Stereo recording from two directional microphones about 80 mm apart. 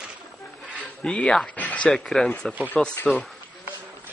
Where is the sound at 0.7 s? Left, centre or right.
Centre.